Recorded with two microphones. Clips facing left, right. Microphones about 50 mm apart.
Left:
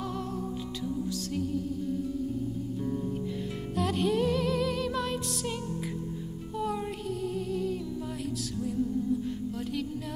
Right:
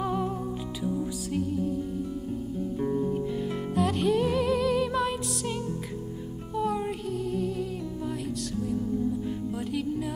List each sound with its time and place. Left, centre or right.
0.0 s music: centre
2.8 s music: right
3.7 s music: centre